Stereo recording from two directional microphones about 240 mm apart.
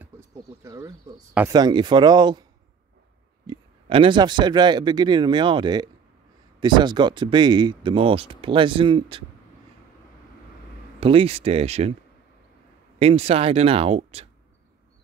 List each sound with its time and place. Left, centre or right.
0.0 s speech: centre
3.4 s speech: right
11.0 s speech: right
13.0 s speech: right